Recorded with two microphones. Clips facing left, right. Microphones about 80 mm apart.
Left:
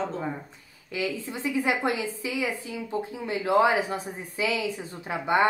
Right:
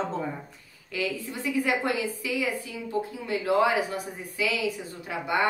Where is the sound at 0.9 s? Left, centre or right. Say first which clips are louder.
Left 1 dB; left.